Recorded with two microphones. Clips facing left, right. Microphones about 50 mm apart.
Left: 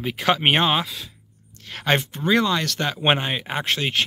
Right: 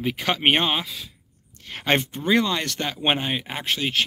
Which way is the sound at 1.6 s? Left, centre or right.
Centre.